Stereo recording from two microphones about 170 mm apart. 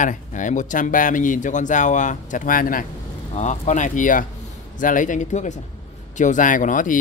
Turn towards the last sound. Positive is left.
turn(degrees=50)  # may be behind; listen again after turning